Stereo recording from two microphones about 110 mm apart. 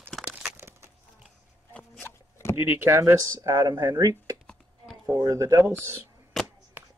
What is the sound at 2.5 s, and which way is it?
Speech, 20° right (ahead or behind).